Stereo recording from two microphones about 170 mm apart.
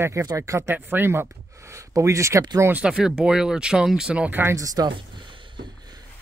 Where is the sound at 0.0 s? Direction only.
20° right (ahead or behind).